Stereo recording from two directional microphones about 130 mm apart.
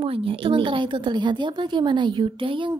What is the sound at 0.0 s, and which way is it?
A woman's voice, 45° right (ahead or behind).